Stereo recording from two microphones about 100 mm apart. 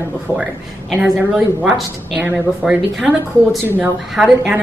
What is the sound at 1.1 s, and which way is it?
Speech, 10° right (ahead or behind).